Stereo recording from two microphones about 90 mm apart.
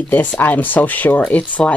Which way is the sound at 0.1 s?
20° left (ahead or behind).